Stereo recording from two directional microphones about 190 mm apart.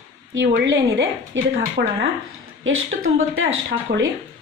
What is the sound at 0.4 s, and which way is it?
A woman's voice, 65° right (ahead or behind).